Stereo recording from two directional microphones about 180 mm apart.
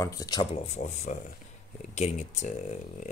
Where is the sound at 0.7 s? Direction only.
40° left (ahead or behind).